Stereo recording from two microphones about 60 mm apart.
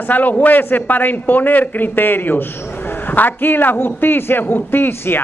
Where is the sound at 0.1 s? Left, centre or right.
Left.